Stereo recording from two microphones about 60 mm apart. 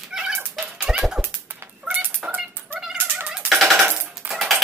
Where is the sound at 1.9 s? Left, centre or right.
Centre.